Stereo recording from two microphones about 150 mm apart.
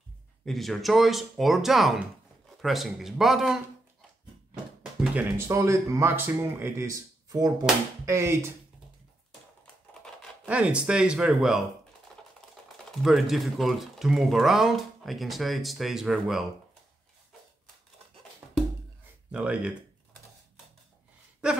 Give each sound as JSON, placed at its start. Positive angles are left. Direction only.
{"t": 0.5, "sound": "speech", "side_deg": 0}
{"t": 5.0, "sound": "speech", "side_deg": -10}
{"t": 10.4, "sound": "speech", "side_deg": -10}
{"t": 13.0, "sound": "speech", "side_deg": 0}
{"t": 19.3, "sound": "speech", "side_deg": -10}